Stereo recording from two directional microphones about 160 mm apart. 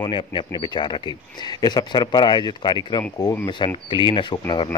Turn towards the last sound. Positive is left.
turn(degrees=30)  # may be behind; listen again after turning